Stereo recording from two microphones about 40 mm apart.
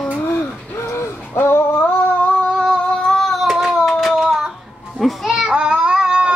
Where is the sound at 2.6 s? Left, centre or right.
Centre.